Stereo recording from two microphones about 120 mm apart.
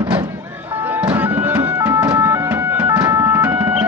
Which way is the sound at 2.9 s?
30° right (ahead or behind).